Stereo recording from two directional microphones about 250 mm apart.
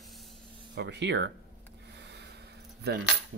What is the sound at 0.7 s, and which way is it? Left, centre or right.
Speech, right.